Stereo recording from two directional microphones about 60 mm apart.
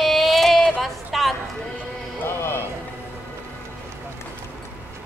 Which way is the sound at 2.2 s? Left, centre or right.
Left.